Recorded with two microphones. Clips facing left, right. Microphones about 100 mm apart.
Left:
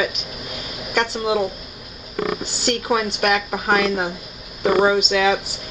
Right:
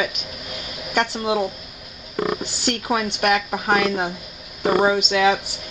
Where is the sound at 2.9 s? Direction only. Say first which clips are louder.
Even; centre (ahead or behind).